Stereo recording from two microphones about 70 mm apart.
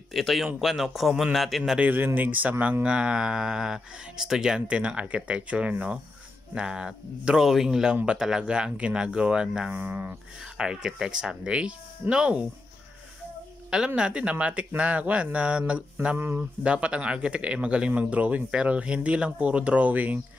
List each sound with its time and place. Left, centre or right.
0.1 s a man's voice: centre
1.8 s speech: right; by 9.8 s centre
9.8 s speech: right
10.4 s speech: centre
13.7 s speech: centre